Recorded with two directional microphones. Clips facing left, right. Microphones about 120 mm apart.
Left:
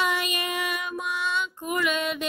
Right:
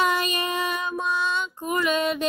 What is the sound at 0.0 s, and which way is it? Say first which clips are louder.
Child singing: right 3 dB; 35° right (ahead or behind).